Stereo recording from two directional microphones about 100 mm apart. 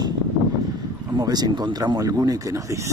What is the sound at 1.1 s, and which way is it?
Speech, 40° right (ahead or behind).